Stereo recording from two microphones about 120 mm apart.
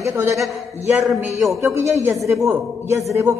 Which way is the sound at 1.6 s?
25° right (ahead or behind).